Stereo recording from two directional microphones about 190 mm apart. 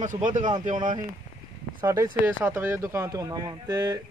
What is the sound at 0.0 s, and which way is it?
Speech, 40° right (ahead or behind).